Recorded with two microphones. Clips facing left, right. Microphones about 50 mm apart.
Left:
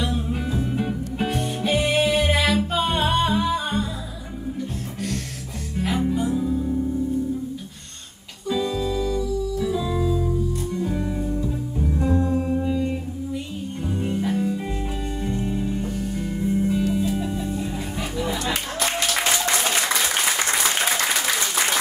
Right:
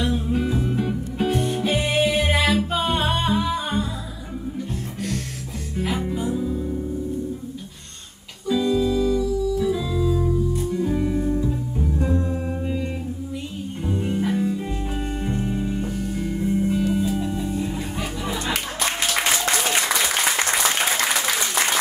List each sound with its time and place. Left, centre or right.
0.0 s music: centre
5.8 s music: centre
8.5 s organ: centre
10.8 s music: centre
13.8 s music: centre
15.2 s music: centre